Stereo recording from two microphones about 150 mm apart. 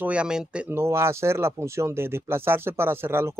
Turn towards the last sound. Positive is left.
turn(degrees=-15)  # may be behind; listen again after turning